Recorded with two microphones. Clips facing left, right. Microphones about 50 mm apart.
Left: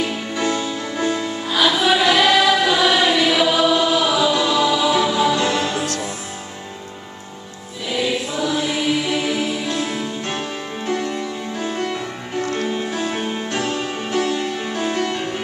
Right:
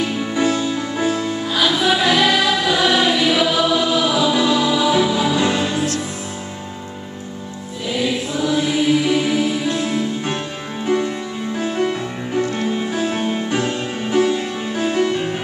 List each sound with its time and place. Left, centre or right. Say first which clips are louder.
0.3 s music: right 4 dB; centre
1.1 s music: right 1 dB; centre
4.3 s music: right 1 dB; centre
8.4 s music: right 6 dB; centre
12.4 s music: right 2 dB; centre
12.6 s music: right 2 dB; centre
13.7 s music: right 3 dB; centre